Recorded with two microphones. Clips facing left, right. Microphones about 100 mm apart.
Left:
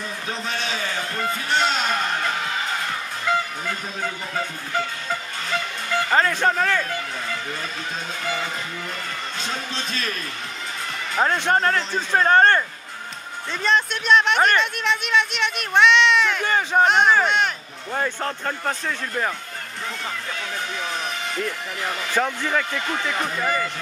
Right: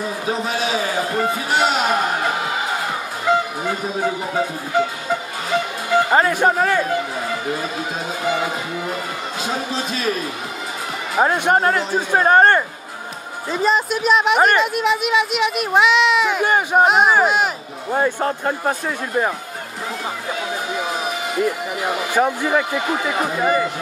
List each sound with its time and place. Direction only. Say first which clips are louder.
0.0 s a sound: right 7 dB; 10° right (ahead or behind)
3.3 s speech: right 5 dB; 20° right (ahead or behind)
8.2 s speech: right 7 dB; 10° right (ahead or behind)
11.1 s speech: right 4 dB; 10° right (ahead or behind)
13.5 s speech: right 4 dB; 5° right (ahead or behind)
17.9 s speech: right 6 dB; 25° right (ahead or behind)
20.3 s a sound: right 5 dB; 5° right (ahead or behind)
23.4 s speech: right 7 dB; 20° right (ahead or behind)